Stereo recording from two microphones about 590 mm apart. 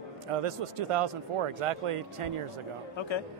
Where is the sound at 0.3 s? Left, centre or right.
Right.